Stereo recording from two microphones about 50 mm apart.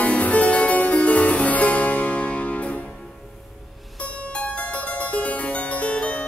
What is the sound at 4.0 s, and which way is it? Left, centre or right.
Harpsichord, left.